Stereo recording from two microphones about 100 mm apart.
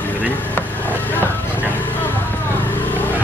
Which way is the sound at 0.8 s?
20° left (ahead or behind).